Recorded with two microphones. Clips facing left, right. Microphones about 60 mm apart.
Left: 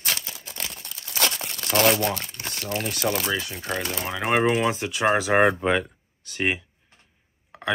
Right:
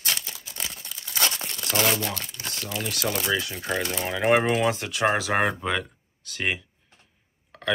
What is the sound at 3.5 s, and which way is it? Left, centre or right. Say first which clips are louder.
Speech: right 1 dB; centre.